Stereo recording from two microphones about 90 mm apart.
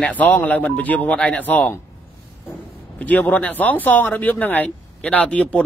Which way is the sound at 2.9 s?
15° left (ahead or behind).